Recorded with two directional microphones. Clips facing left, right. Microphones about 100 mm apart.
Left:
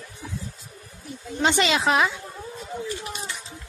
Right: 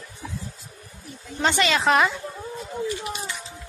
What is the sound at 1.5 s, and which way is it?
Speech, 20° left (ahead or behind).